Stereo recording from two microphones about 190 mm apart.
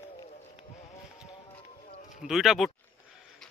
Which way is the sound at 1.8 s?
40° left (ahead or behind).